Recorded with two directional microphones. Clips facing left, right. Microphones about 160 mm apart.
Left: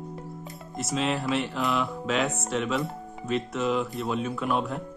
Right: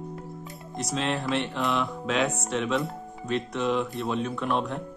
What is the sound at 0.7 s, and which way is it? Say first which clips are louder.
Speech: left 1 dB; centre (ahead or behind).